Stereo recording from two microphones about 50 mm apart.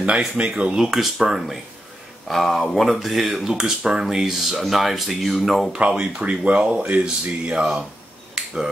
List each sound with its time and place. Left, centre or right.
0.4 s speech: right
0.7 s speech: centre
5.7 s speech: right
6.9 s speech: right
7.5 s speech: centre
8.4 s finger snapping: centre